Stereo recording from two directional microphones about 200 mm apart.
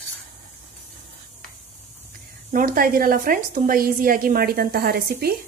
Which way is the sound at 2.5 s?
45° right (ahead or behind).